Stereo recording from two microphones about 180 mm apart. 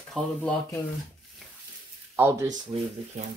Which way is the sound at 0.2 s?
5° left (ahead or behind).